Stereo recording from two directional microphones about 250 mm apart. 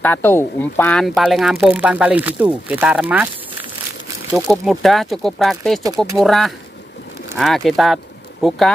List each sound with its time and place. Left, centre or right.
0.0 s speech: centre
4.5 s speech: centre